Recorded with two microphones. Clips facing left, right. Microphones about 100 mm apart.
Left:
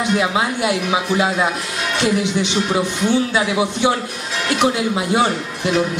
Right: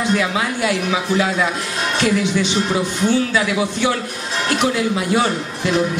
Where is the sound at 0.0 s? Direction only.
25° left (ahead or behind).